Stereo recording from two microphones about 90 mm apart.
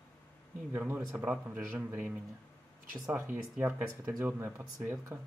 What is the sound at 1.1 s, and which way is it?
Speech, 15° right (ahead or behind).